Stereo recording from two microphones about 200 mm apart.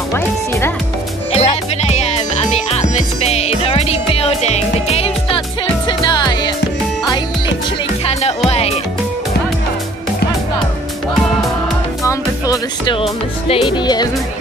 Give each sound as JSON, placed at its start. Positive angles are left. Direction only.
{"t": 0.1, "sound": "speech", "side_deg": 10}
{"t": 1.3, "sound": "music", "side_deg": 30}
{"t": 8.0, "sound": "music", "side_deg": 30}
{"t": 12.0, "sound": "music", "side_deg": 15}
{"t": 13.5, "sound": "speech", "side_deg": 25}